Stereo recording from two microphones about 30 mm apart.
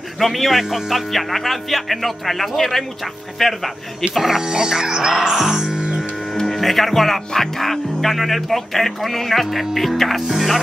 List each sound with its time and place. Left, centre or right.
0.2 s speech: centre
0.7 s speech: centre
1.1 s speech: centre
4.2 s speech: centre
4.5 s speech: right
6.4 s speech: centre